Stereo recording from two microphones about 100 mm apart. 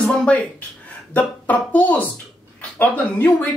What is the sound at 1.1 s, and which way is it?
Speech, 15° left (ahead or behind).